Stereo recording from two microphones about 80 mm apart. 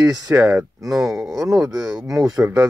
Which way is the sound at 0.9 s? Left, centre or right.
Centre.